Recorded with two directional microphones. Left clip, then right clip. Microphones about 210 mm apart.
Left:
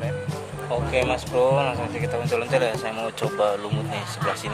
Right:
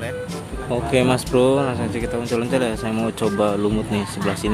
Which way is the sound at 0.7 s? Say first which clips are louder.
Right 4 dB; 15° right (ahead or behind).